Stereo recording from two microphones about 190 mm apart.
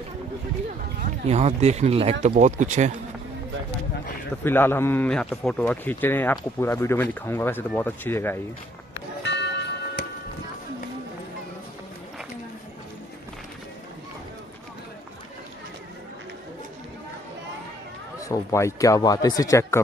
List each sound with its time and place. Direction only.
1.2 s speech: 35° right (ahead or behind)
4.5 s a man's voice: 10° left (ahead or behind)
9.2 s music: 65° left (ahead or behind)
18.3 s a man's voice: 15° left (ahead or behind)